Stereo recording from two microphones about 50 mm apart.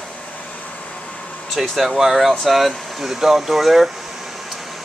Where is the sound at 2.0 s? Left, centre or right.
Centre.